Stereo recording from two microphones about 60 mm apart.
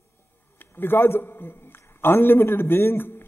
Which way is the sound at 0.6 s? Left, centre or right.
Left.